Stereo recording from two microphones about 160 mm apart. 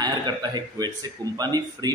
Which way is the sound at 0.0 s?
25° right (ahead or behind).